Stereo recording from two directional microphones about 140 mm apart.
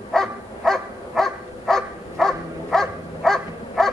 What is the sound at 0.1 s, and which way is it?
Bow-wow, 5° left (ahead or behind).